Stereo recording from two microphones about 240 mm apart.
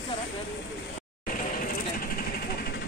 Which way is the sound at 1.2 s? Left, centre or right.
Left.